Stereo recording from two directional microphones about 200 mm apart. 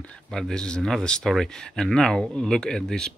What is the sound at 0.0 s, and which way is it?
Speech, 5° left (ahead or behind).